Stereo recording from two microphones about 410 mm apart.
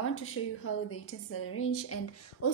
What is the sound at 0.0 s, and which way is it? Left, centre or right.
A woman's voice, left.